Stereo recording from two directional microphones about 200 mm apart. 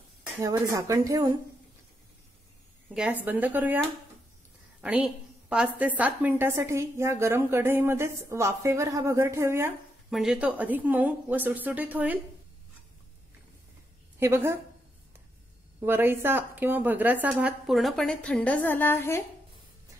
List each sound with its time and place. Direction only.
0.4 s a woman's voice: 15° right (ahead or behind)
2.9 s a woman's voice: 5° right (ahead or behind)
4.8 s a woman's voice: 5° right (ahead or behind)
14.2 s a woman's voice: 15° right (ahead or behind)
15.8 s a woman's voice: 10° right (ahead or behind); by 19.2 s 10° left (ahead or behind)